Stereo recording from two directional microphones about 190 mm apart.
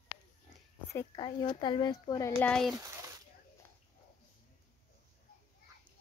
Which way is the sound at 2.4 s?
5° left (ahead or behind).